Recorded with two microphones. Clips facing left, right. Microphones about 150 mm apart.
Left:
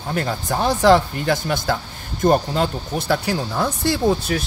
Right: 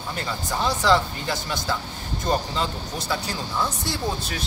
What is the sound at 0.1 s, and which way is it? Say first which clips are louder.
Speech: left 7 dB; 55° left (ahead or behind).